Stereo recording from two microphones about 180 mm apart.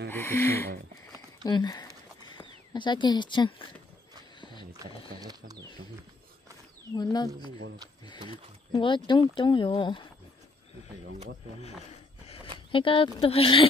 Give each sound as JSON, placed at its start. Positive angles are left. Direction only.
{"t": 0.1, "sound": "speech", "side_deg": 10}
{"t": 1.4, "sound": "speech", "side_deg": 25}
{"t": 4.4, "sound": "a sound", "side_deg": 25}
{"t": 5.2, "sound": "speech", "side_deg": -20}
{"t": 7.0, "sound": "speech", "side_deg": 25}
{"t": 8.3, "sound": "speech", "side_deg": 25}
{"t": 12.5, "sound": "speech", "side_deg": 30}